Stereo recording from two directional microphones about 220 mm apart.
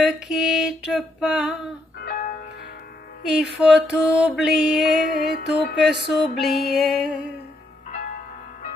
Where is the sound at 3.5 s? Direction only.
5° right (ahead or behind).